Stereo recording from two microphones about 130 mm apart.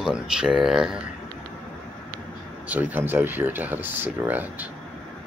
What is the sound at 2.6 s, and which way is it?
Speech, 10° right (ahead or behind).